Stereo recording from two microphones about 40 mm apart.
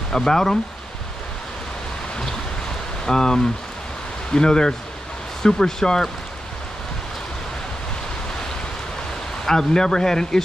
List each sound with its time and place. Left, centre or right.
0.1 s speech: centre
3.1 s speech: centre
9.5 s speech: centre